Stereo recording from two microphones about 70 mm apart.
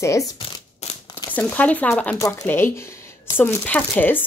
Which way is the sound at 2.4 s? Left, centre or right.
Left.